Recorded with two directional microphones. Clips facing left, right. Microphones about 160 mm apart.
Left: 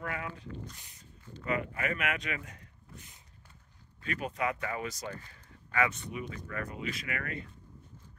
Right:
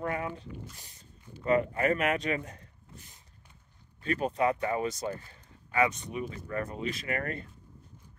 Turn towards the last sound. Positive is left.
turn(degrees=-40)  # may be behind; listen again after turning